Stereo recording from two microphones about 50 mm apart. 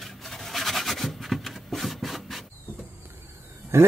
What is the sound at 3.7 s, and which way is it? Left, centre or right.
Roaring cats, right.